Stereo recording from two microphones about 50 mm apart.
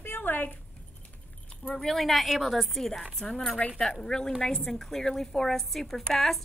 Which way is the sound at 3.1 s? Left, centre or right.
Centre.